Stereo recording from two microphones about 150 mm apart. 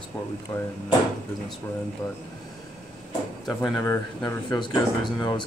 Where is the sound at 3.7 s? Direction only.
20° left (ahead or behind).